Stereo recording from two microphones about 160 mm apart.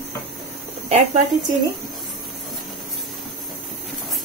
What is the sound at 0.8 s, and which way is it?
Speech, 50° right (ahead or behind).